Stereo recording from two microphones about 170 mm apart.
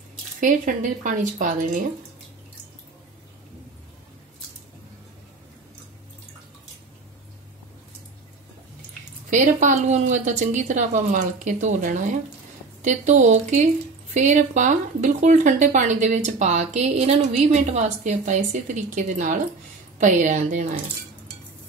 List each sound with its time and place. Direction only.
0.4 s speech: 50° right (ahead or behind)
9.3 s speech: 45° right (ahead or behind)